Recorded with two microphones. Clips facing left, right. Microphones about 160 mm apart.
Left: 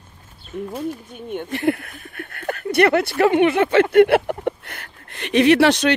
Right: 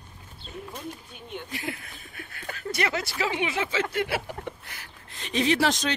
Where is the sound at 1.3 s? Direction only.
55° left (ahead or behind).